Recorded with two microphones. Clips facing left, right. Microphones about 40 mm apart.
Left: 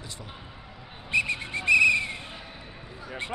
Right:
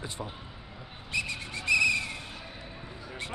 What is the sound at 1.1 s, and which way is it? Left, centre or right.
Whistle, left.